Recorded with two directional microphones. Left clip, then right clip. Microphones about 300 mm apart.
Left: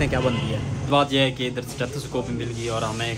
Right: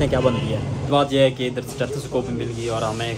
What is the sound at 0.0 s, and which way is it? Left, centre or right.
Speech, centre.